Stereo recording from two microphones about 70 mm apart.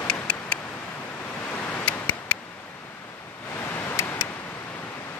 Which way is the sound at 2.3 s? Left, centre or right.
Left.